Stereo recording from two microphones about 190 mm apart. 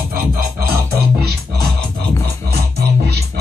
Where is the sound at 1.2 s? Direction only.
55° right (ahead or behind).